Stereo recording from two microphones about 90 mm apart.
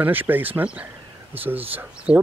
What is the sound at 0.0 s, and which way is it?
Speech, 20° right (ahead or behind).